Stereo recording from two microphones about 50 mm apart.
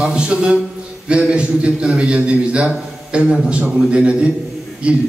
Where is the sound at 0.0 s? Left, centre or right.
Centre.